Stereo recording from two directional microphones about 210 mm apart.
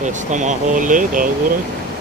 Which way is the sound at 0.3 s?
35° right (ahead or behind).